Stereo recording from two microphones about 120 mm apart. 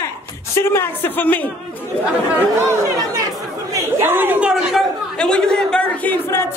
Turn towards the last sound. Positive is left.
turn(degrees=20)  # may be behind; listen again after turning